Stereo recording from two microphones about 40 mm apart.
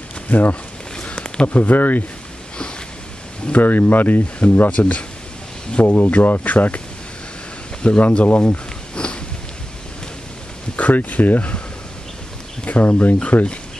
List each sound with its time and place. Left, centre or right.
0.3 s speech: left
1.0 s a sound: left
1.5 s speech: left
3.5 s speech: left
4.6 s speech: left
5.9 s speech: left
7.8 s speech: left
8.3 s sniff: left
10.8 s speech: left
12.6 s speech: left